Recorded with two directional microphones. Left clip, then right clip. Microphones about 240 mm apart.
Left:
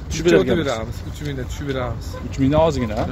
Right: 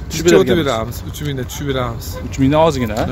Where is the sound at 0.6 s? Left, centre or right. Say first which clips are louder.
Right 5 dB; right.